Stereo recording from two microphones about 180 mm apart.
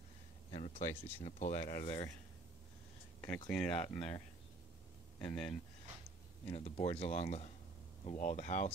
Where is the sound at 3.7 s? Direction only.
30° left (ahead or behind).